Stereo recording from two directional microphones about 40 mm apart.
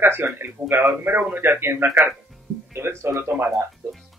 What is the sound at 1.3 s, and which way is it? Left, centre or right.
Speech, right.